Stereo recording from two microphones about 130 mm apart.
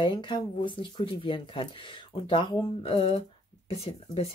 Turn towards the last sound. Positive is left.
turn(degrees=50)  # may be behind; listen again after turning